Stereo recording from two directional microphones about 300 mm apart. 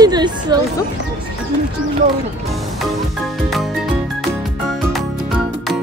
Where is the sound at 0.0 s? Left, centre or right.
Centre.